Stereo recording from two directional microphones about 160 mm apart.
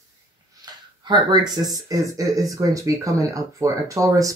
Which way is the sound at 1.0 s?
25° right (ahead or behind).